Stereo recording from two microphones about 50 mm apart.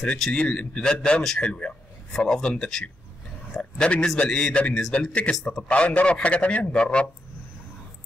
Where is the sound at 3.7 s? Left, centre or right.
Centre.